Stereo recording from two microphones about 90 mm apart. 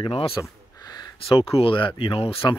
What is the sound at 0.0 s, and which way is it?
Speech, 90° left.